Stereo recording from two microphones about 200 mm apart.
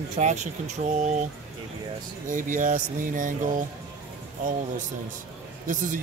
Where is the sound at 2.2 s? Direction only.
40° right (ahead or behind).